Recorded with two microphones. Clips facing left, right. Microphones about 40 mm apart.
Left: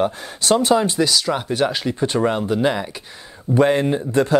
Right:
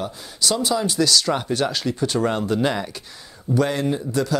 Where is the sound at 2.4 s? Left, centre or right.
Centre.